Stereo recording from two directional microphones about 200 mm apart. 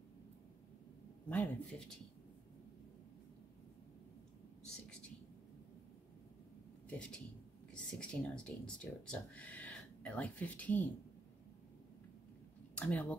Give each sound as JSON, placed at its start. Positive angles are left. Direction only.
{"t": 1.3, "sound": "speech", "side_deg": 5}
{"t": 6.9, "sound": "a sound", "side_deg": 5}
{"t": 7.7, "sound": "speech", "side_deg": 5}
{"t": 12.7, "sound": "speech", "side_deg": 5}